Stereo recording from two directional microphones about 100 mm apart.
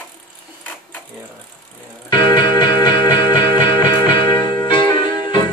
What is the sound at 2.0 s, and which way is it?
Music, 50° left (ahead or behind).